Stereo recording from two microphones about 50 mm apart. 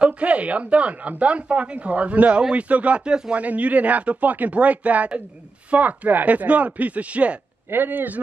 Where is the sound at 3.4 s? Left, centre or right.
Right.